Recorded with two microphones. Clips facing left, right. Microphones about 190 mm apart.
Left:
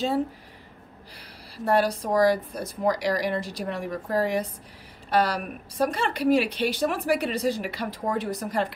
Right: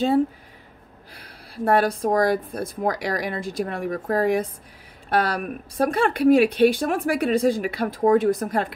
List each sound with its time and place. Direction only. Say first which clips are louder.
1.6 s speech: right 3 dB; 55° right (ahead or behind)